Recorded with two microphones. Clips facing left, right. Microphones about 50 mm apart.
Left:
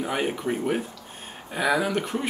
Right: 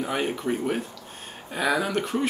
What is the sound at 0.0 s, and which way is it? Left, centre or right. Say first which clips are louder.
Speech: even; centre.